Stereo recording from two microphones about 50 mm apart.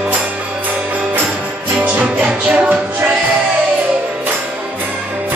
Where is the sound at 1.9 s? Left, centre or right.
Right.